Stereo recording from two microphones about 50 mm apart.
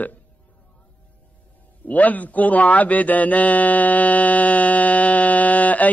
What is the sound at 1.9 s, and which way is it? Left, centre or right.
Speech, left.